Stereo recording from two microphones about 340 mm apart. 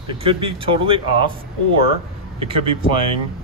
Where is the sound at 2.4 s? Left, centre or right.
Centre.